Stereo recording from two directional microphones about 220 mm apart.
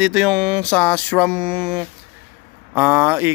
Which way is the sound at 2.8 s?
10° right (ahead or behind).